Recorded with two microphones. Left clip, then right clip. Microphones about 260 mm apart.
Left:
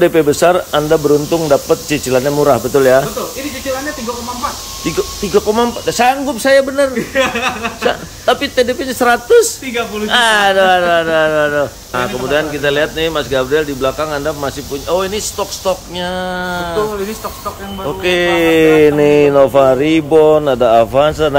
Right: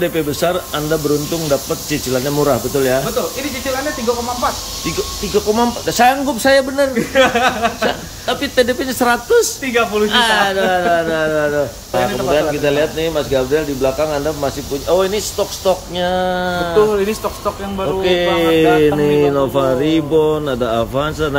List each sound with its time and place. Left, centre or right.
0.0 s speech: centre
4.8 s speech: centre
7.2 s speech: right
7.8 s speech: centre
18.0 s speech: centre